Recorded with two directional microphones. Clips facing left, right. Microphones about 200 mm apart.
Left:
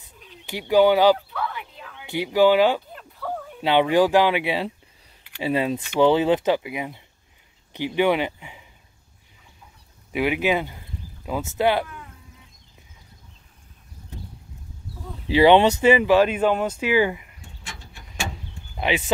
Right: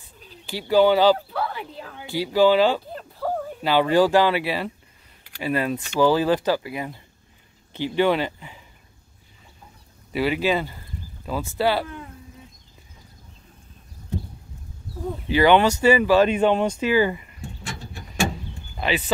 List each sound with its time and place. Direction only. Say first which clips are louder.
0.5 s speech: even; 15° left (ahead or behind)
1.1 s a sound: right 2 dB; 35° right (ahead or behind)
2.0 s speech: even; 15° left (ahead or behind)
2.9 s a sound: right 4 dB; 35° right (ahead or behind)
3.8 s speech: right 1 dB; 15° left (ahead or behind)
10.1 s speech: even; 15° left (ahead or behind)
15.2 s speech: left 2 dB; 30° left (ahead or behind)
15.8 s speech: even; 15° left (ahead or behind)
18.8 s speech: left 1 dB; 15° left (ahead or behind)